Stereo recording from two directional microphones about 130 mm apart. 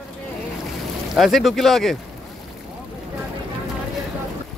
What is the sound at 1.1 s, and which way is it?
Speech, centre (ahead or behind).